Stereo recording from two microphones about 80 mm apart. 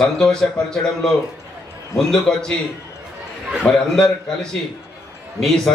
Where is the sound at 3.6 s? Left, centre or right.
Centre.